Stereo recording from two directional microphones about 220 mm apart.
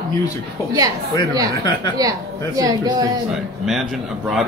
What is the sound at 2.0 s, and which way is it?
A man's voice, 15° right (ahead or behind).